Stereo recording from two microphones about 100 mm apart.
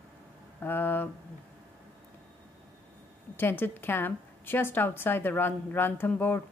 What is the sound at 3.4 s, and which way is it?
A woman's voice, 20° left (ahead or behind).